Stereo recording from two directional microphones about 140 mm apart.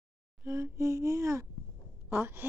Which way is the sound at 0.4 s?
20° right (ahead or behind).